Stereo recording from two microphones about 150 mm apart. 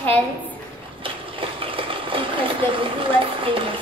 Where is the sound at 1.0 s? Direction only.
35° right (ahead or behind).